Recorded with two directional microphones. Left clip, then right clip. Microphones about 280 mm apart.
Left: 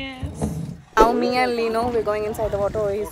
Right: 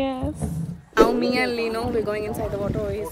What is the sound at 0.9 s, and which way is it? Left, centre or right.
Speech, centre.